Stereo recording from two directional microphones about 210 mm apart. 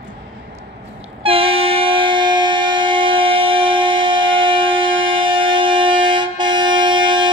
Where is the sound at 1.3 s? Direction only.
25° right (ahead or behind).